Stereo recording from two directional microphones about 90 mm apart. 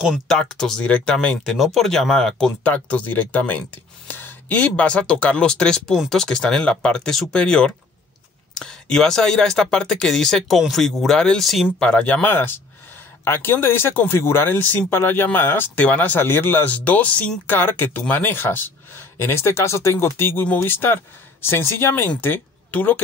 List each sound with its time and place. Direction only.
0.3 s speech: 5° left (ahead or behind)
2.6 s speech: 15° left (ahead or behind); by 11.7 s centre (ahead or behind)
11.8 s speech: 10° left (ahead or behind)